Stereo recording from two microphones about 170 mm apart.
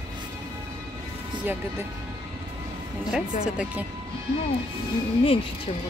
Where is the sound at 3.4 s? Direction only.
5° right (ahead or behind).